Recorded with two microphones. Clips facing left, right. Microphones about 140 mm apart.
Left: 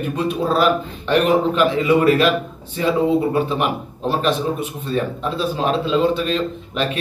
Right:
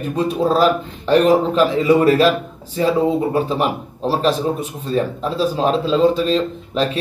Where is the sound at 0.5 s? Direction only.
35° right (ahead or behind).